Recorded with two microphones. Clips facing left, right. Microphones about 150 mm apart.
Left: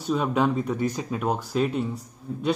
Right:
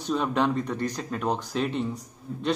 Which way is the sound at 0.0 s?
5° left (ahead or behind).